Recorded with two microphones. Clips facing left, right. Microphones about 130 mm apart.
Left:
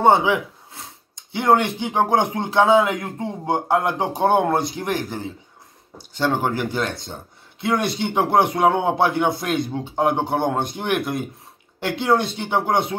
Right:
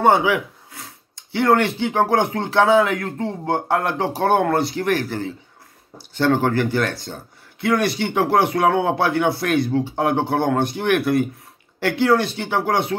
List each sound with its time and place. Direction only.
0.0 s speech: 20° left (ahead or behind)